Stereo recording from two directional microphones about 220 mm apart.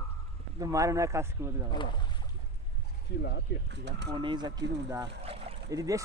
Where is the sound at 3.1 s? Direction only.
50° left (ahead or behind).